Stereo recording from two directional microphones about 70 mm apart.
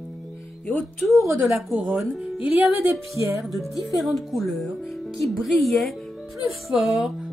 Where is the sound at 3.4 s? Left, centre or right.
Centre.